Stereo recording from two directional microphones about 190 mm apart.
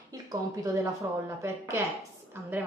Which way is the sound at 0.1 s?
20° right (ahead or behind).